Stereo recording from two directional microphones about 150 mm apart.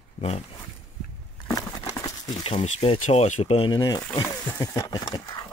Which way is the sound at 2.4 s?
40° left (ahead or behind).